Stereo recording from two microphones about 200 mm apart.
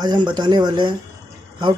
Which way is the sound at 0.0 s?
20° right (ahead or behind).